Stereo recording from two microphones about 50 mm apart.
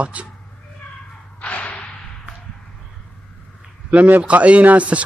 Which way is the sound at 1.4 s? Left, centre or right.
Left.